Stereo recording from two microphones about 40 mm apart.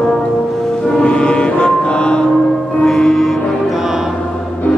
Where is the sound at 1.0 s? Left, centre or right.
Left.